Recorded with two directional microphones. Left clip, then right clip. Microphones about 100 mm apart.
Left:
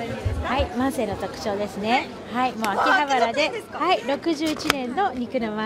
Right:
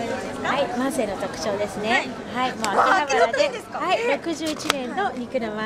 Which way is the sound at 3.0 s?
5° right (ahead or behind).